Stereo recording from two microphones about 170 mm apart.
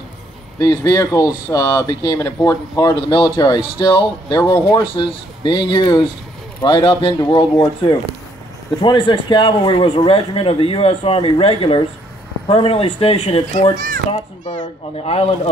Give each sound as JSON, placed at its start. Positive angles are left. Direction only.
{"t": 0.6, "sound": "speech", "side_deg": 20}
{"t": 8.8, "sound": "speech", "side_deg": 25}
{"t": 13.7, "sound": "a child's voice", "side_deg": -60}
{"t": 15.0, "sound": "speech", "side_deg": 35}